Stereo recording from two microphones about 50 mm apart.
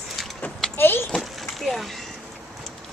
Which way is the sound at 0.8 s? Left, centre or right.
Left.